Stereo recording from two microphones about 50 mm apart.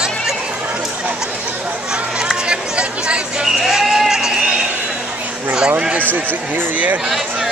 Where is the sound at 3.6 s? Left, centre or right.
Centre.